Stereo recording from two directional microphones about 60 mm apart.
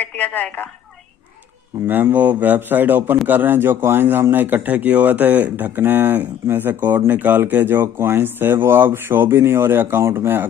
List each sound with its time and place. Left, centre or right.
0.0 s a woman's voice: left
1.9 s speech: right